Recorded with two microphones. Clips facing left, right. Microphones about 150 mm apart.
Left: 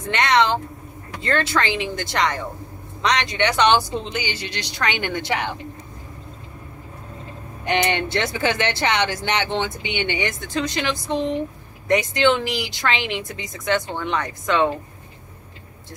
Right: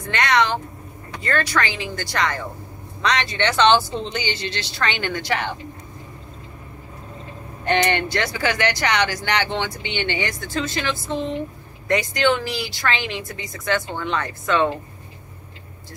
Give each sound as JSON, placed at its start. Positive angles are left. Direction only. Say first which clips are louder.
{"t": 0.1, "sound": "speech", "louder": "left 1 dB", "side_deg": 25}
{"t": 7.6, "sound": "speech", "louder": "right 1 dB", "side_deg": 15}